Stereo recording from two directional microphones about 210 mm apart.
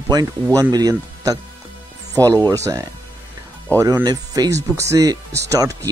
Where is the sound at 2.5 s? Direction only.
15° right (ahead or behind).